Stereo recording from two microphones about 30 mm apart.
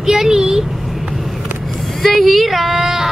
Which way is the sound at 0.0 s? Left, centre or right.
Centre.